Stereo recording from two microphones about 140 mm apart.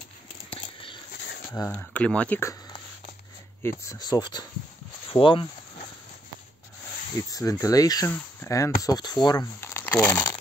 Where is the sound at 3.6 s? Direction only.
20° left (ahead or behind).